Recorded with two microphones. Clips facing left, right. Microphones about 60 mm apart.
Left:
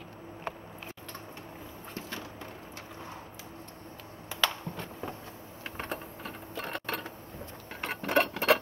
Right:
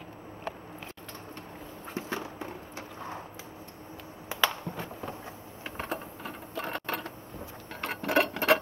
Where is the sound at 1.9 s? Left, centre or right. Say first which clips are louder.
Right 6 dB; centre.